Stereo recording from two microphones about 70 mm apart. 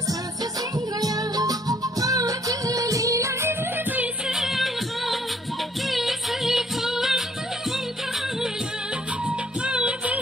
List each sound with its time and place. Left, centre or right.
0.7 s music: right
4.3 s music: centre
9.2 s music: centre